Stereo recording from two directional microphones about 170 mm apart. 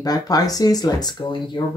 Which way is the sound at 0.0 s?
20° left (ahead or behind).